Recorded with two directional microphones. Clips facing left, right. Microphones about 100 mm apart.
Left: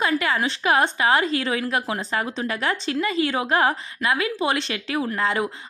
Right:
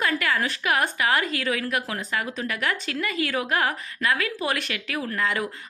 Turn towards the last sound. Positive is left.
turn(degrees=30)  # may be behind; listen again after turning